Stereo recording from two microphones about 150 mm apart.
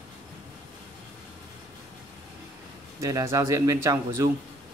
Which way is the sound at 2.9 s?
20° right (ahead or behind).